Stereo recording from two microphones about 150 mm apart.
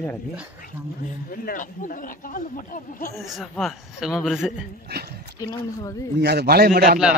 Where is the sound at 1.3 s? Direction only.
70° left (ahead or behind).